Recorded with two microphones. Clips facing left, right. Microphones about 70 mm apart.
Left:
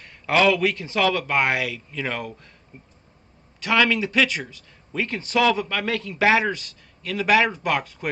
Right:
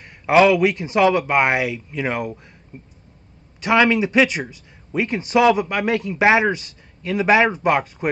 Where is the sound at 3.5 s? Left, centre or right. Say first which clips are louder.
Right 4 dB; right.